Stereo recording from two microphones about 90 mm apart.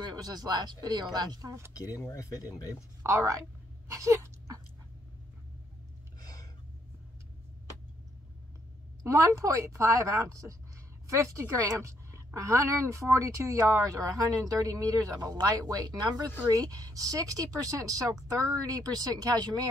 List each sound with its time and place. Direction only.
0.0 s speech: 45° right (ahead or behind)
1.7 s speech: 40° left (ahead or behind)
3.0 s speech: 35° right (ahead or behind)
3.9 s a sound: 35° right (ahead or behind)
6.2 s a sound: 40° left (ahead or behind)
9.0 s a woman's voice: 35° right (ahead or behind)